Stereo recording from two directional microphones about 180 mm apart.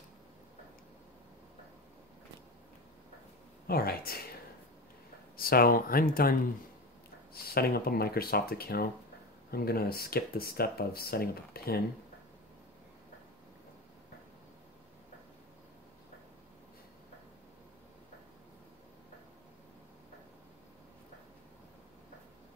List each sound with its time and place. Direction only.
3.6 s speech: 55° left (ahead or behind)
5.3 s speech: 55° left (ahead or behind)